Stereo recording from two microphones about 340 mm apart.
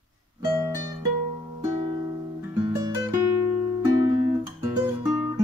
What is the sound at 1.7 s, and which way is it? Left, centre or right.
Music, centre.